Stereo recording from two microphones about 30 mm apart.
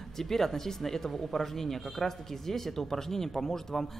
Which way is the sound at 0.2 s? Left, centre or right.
Centre.